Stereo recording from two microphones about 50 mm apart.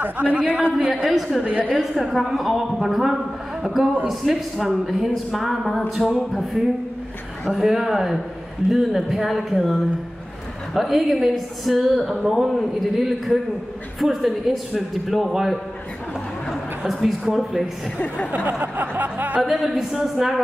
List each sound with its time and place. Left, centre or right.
0.2 s a man's voice: right
0.7 s speech: centre
1.4 s a woman's voice: right
1.8 s a woman's voice: centre
18.0 s speech: left
18.3 s a sound: right
19.4 s speech: centre